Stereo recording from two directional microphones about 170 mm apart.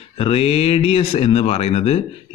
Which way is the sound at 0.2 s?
35° left (ahead or behind).